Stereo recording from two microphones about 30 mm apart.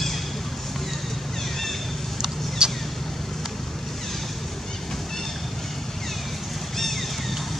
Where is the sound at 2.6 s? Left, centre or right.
Right.